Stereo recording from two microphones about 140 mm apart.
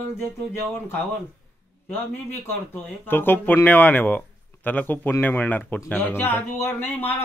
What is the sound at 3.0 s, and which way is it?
Speech, 15° left (ahead or behind).